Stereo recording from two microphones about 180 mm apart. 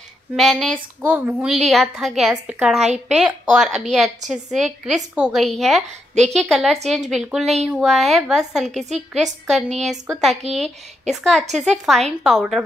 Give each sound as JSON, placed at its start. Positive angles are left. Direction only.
{"t": 0.4, "sound": "a woman's voice", "side_deg": 0}
{"t": 2.8, "sound": "a woman's voice", "side_deg": -40}
{"t": 3.2, "sound": "a woman's voice", "side_deg": -5}